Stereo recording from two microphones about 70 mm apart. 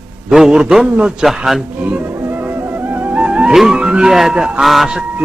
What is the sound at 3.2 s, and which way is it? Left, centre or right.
Music, centre.